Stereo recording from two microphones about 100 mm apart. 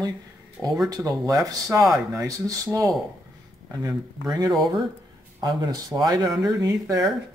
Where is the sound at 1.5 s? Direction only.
30° right (ahead or behind).